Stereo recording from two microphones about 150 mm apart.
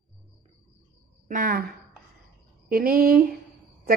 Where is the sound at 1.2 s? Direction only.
65° right (ahead or behind).